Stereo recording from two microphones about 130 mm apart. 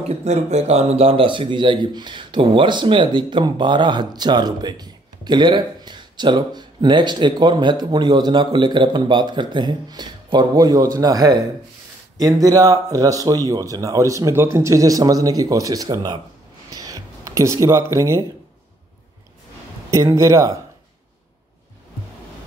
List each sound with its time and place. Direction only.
0.2 s speech: 60° right (ahead or behind); by 16.2 s 30° right (ahead or behind)
16.7 s a sound: 30° right (ahead or behind)
19.9 s speech: 25° right (ahead or behind)